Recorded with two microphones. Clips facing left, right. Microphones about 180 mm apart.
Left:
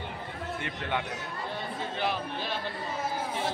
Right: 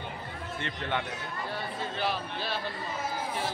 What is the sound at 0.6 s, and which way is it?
A man's voice, 10° left (ahead or behind).